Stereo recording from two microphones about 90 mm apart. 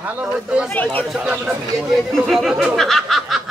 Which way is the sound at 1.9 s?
Centre (ahead or behind).